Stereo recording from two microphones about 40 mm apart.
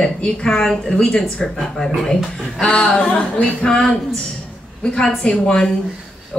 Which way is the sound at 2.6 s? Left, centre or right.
Left.